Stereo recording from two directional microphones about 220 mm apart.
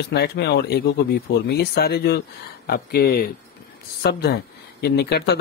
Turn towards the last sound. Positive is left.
turn(degrees=50)  # may be behind; listen again after turning